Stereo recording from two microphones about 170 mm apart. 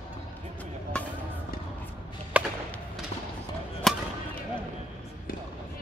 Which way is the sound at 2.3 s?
10° right (ahead or behind).